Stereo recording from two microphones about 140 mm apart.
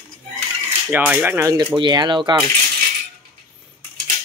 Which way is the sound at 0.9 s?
10° right (ahead or behind).